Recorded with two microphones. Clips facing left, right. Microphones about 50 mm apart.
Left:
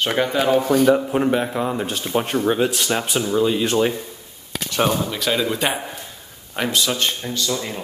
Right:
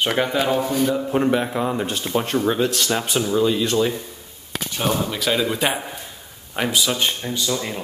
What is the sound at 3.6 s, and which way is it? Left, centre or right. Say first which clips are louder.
Speech: left 1 dB; left.